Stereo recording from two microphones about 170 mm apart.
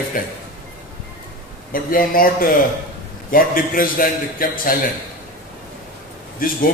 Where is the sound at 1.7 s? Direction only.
55° left (ahead or behind).